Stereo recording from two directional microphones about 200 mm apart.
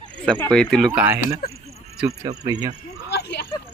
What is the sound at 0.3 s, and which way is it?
Speech, 5° left (ahead or behind).